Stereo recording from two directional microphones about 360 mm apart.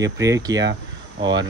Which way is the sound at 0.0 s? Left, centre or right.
Centre.